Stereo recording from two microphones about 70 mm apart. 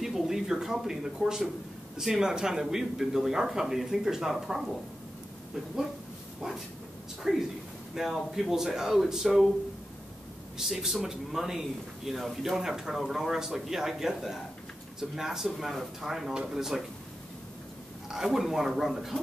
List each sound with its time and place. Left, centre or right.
0.0 s a man's voice: centre
7.2 s a man's voice: centre
10.6 s a man's voice: centre
18.1 s a man's voice: centre